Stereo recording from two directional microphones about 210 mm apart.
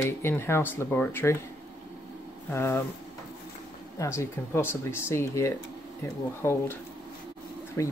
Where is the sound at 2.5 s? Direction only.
10° left (ahead or behind).